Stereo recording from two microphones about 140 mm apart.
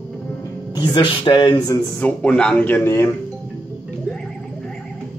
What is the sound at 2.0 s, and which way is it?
Speech, 5° left (ahead or behind).